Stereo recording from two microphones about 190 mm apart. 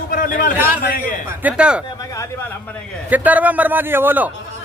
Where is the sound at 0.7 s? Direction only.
45° left (ahead or behind).